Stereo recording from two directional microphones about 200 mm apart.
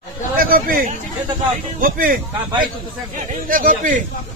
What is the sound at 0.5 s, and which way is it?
A man's voice, 45° right (ahead or behind).